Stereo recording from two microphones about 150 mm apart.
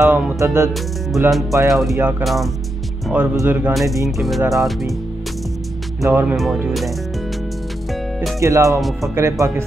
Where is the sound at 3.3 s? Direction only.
15° right (ahead or behind).